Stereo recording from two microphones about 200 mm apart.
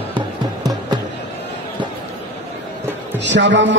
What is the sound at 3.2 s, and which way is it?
Speech, 65° right (ahead or behind).